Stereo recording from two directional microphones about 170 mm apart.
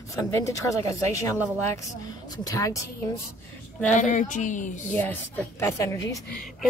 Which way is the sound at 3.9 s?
45° left (ahead or behind).